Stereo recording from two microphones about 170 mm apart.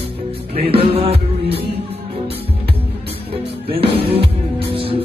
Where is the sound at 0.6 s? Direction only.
35° right (ahead or behind).